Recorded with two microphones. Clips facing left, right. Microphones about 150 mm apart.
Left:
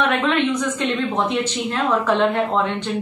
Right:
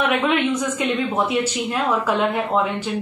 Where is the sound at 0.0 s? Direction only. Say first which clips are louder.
Even; 10° right (ahead or behind).